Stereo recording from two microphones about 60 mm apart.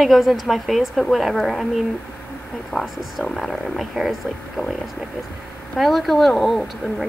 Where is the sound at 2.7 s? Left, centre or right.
Left.